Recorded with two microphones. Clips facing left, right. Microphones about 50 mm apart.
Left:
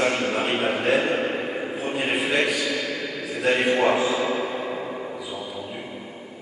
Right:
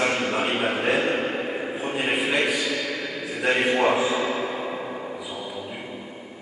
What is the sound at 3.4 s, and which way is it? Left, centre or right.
Mantra, centre.